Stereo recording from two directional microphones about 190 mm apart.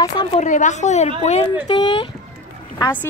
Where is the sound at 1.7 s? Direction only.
25° left (ahead or behind).